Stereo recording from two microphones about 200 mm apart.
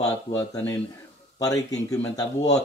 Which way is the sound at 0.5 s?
15° left (ahead or behind).